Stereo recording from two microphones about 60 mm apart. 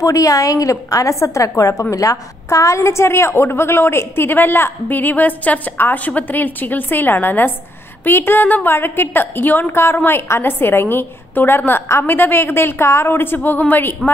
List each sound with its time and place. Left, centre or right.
0.0 s a woman's voice: left